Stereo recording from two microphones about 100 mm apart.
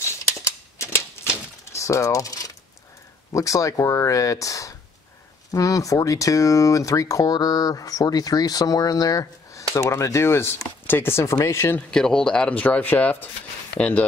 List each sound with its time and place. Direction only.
0.4 s typewriter: 25° left (ahead or behind)
1.7 s a sound: 30° left (ahead or behind)
3.3 s speech: 35° left (ahead or behind)
11.9 s speech: 5° left (ahead or behind)